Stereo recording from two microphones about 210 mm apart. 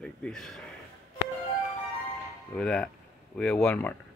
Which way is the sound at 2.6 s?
5° left (ahead or behind).